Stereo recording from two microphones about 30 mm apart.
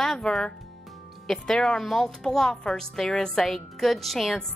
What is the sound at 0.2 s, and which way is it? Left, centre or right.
A woman's voice, left.